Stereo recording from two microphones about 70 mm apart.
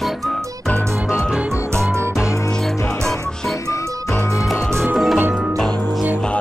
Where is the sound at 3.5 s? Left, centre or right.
Left.